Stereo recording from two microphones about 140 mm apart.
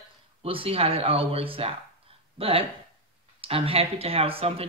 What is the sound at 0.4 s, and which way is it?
Speech, 45° right (ahead or behind).